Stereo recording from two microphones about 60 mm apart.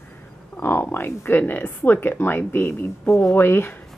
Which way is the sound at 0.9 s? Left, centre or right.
Left.